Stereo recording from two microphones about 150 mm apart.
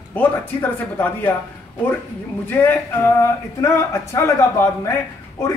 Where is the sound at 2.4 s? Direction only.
15° left (ahead or behind).